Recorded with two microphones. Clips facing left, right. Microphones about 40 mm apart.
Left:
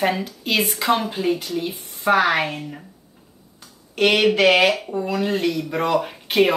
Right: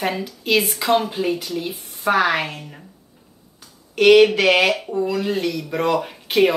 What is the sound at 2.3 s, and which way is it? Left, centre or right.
Speech, left.